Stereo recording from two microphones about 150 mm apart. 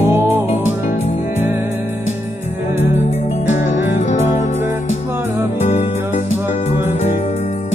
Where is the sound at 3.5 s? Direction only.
55° left (ahead or behind).